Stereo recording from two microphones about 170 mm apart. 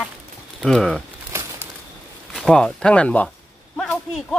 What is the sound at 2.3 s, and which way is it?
Speech, 5° left (ahead or behind).